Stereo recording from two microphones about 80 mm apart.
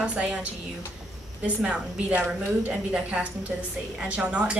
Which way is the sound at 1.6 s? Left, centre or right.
Centre.